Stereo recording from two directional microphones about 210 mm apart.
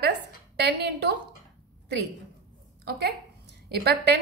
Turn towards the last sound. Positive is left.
turn(degrees=-50)  # may be behind; listen again after turning